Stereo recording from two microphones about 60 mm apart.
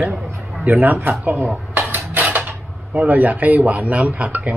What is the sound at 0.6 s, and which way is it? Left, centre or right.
Speech, right.